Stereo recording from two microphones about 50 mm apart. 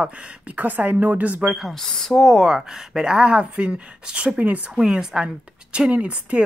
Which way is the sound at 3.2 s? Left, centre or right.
Right.